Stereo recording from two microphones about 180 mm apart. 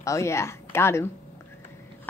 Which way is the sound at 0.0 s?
15° left (ahead or behind).